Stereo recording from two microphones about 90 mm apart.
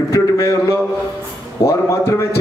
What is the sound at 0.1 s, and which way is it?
A man's voice, 35° left (ahead or behind).